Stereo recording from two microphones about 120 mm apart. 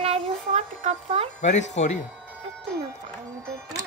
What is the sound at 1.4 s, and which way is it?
Speech, 80° left.